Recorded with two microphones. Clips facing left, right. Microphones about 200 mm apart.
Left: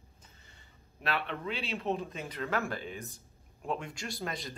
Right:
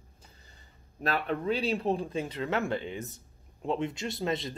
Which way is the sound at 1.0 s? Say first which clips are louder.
Right 5 dB; 40° right (ahead or behind).